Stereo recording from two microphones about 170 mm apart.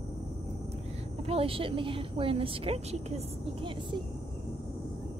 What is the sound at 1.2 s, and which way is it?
Speech, 35° right (ahead or behind).